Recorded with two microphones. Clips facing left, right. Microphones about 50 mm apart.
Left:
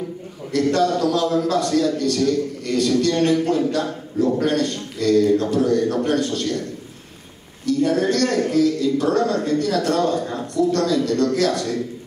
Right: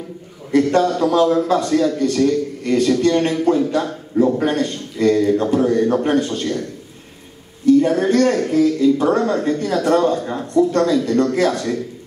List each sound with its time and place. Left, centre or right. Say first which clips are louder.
0.5 s a man's voice: right 3 dB; right
7.6 s a man's voice: right 5 dB; right